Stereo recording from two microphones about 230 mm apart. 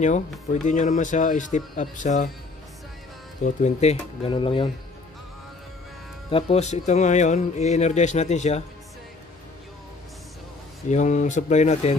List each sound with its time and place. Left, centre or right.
0.7 s speech: left
3.4 s speech: left
6.3 s speech: left
10.9 s speech: left